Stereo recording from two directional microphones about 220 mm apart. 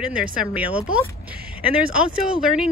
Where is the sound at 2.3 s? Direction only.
5° right (ahead or behind).